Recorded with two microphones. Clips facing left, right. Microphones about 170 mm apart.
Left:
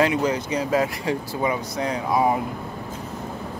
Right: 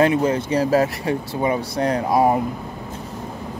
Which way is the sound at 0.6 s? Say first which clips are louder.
Right 6 dB; 35° right (ahead or behind).